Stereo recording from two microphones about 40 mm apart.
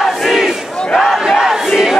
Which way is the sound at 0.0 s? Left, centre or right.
Centre.